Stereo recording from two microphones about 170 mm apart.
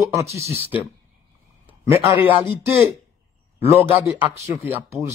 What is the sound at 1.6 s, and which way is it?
Speech, 15° right (ahead or behind).